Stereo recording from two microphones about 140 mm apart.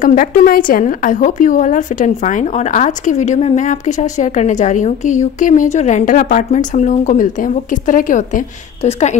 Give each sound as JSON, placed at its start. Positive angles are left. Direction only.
{"t": 0.0, "sound": "a woman's voice", "side_deg": 80}
{"t": 8.8, "sound": "a woman's voice", "side_deg": 55}